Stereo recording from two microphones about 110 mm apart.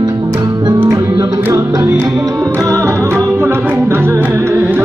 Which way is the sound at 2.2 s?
30° right (ahead or behind).